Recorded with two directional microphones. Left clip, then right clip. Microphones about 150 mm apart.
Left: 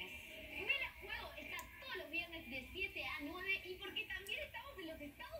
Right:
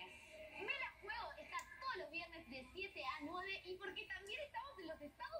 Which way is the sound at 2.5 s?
20° left (ahead or behind).